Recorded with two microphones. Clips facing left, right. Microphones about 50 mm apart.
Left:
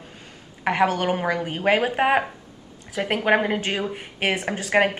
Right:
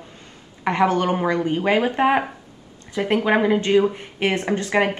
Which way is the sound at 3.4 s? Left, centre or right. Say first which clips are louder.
Right 8 dB; centre.